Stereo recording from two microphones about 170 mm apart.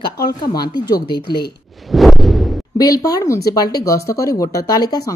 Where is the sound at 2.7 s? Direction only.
20° left (ahead or behind).